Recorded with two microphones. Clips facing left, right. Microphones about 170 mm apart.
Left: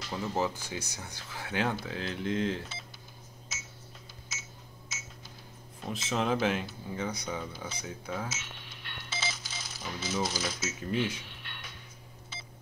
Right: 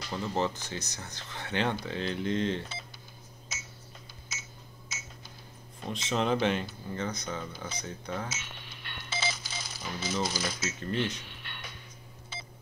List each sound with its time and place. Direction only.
0.0 s speech: 5° left (ahead or behind)
3.5 s a sound: centre (ahead or behind)
5.8 s speech: 5° left (ahead or behind)